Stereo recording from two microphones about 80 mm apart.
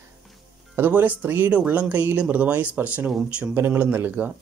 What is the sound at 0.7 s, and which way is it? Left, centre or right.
Speech, right.